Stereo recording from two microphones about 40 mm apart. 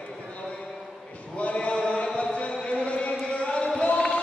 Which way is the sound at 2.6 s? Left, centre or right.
Left.